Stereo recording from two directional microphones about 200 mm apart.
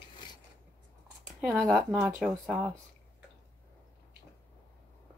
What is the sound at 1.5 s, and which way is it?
Speech, centre (ahead or behind).